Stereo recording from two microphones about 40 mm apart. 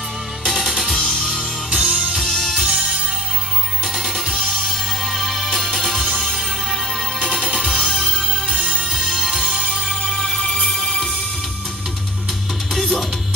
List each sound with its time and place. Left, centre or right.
0.4 s music: centre
0.9 s music: centre
1.7 s music: right
2.2 s music: centre
2.6 s music: right
4.3 s music: centre
8.9 s music: centre
9.8 s music: centre
12.7 s music: centre